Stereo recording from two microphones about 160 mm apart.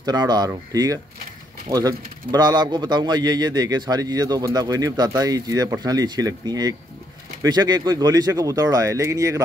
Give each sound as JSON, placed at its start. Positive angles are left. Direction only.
{"t": 0.0, "sound": "speech", "side_deg": -25}
{"t": 1.7, "sound": "speech", "side_deg": -25}